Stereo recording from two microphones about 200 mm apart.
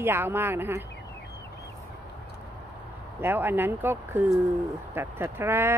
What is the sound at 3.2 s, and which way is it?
Speech, 10° right (ahead or behind).